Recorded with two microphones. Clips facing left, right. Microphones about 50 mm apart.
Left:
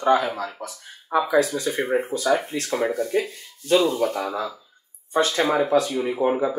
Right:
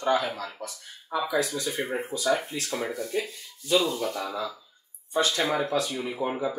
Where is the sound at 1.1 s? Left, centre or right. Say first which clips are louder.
Left 7 dB; left.